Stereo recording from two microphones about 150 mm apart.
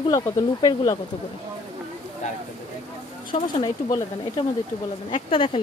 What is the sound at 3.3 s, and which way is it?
Speech, 30° left (ahead or behind).